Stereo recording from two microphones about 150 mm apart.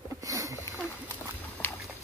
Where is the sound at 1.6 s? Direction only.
15° left (ahead or behind).